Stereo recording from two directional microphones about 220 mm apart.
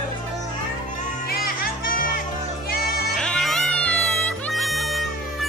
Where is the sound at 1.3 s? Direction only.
40° left (ahead or behind).